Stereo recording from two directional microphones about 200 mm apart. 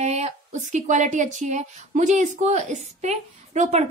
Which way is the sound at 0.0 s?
35° right (ahead or behind).